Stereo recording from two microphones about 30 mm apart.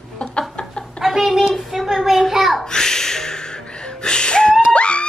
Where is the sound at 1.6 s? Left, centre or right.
Centre.